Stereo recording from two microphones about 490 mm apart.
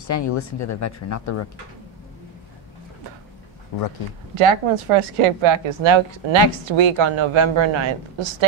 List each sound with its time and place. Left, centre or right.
0.0 s speech: left
4.4 s a woman's voice: right